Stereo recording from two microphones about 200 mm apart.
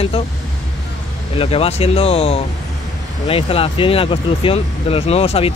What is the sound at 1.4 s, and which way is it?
Speech, 30° left (ahead or behind).